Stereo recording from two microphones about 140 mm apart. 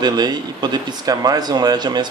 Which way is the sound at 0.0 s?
30° right (ahead or behind).